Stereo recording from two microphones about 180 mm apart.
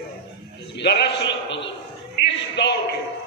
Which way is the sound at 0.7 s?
70° left (ahead or behind).